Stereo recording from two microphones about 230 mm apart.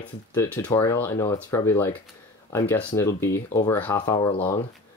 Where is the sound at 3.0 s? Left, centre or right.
Centre.